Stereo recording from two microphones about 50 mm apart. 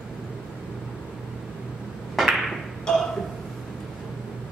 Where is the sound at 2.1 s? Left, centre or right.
Centre.